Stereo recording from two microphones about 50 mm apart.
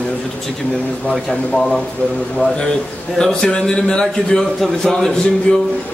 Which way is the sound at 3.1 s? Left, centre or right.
Centre.